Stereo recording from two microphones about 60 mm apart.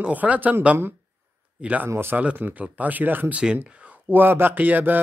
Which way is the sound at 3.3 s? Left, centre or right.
Centre.